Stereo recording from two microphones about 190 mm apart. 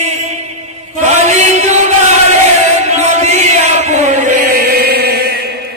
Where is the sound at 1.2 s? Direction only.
35° right (ahead or behind); by 5.1 s 55° right (ahead or behind).